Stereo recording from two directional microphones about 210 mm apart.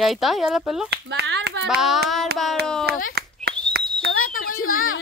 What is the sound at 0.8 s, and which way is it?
Speech, 55° right (ahead or behind).